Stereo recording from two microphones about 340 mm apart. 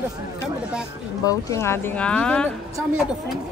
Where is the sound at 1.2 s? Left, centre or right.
Centre.